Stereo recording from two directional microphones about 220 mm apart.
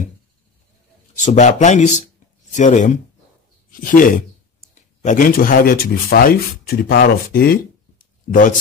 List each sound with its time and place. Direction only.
1.1 s speech: 35° left (ahead or behind)